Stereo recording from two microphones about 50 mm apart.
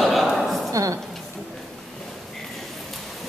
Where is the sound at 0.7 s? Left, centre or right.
Right.